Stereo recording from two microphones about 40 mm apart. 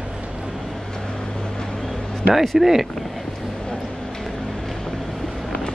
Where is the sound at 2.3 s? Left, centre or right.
Centre.